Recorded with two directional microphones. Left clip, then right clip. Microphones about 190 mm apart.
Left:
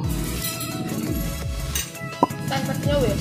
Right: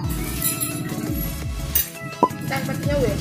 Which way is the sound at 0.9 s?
Centre (ahead or behind).